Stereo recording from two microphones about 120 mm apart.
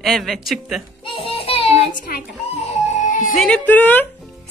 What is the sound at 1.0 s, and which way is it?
Music, 50° left (ahead or behind).